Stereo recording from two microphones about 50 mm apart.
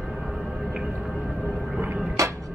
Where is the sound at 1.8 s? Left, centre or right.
Right.